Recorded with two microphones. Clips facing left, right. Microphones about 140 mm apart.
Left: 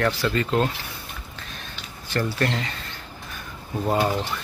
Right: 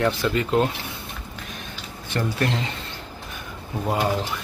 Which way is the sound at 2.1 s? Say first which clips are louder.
Even; 20° right (ahead or behind).